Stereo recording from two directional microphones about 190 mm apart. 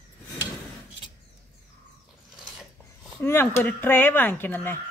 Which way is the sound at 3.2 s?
10° left (ahead or behind).